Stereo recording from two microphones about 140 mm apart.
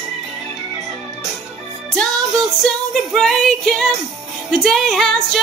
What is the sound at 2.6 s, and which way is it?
Music, 5° left (ahead or behind).